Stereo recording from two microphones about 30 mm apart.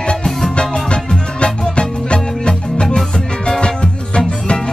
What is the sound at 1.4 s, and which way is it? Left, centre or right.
Music, left.